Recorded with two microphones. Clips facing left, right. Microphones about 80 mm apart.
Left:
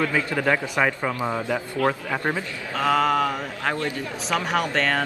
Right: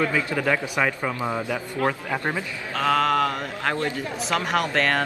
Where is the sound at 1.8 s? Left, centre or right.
Right.